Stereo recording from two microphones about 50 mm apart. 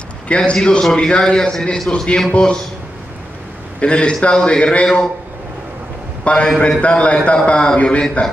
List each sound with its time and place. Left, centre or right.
0.3 s a man's voice: centre
3.8 s a man's voice: left
6.2 s a man's voice: centre